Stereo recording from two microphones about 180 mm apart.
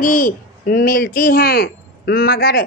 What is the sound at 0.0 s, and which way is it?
A child's voice, 50° left (ahead or behind).